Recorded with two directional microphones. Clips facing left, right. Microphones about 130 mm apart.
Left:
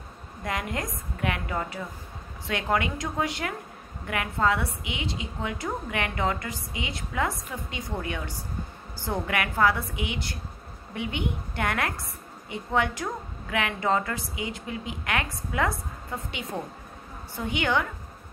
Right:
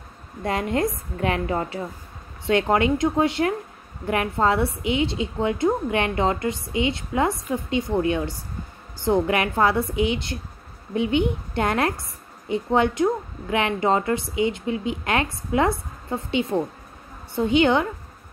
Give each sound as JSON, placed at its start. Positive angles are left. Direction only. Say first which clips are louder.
{"t": 0.4, "sound": "a woman's voice", "louder": "right 8 dB", "side_deg": -30}